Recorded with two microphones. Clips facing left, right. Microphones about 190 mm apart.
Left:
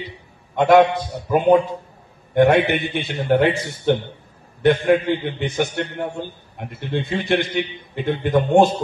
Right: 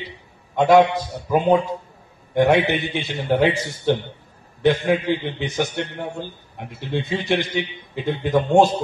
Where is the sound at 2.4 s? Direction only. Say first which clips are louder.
Left 1 dB; 55° left (ahead or behind).